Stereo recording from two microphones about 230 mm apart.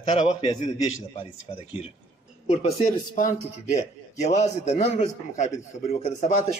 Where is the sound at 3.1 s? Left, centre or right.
Left.